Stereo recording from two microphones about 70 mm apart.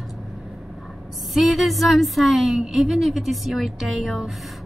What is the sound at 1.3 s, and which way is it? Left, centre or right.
A woman's voice, centre.